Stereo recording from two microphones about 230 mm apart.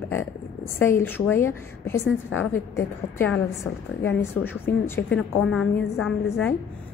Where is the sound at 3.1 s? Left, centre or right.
Centre.